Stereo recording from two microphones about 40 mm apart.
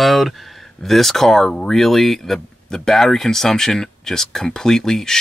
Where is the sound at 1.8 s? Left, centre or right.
Centre.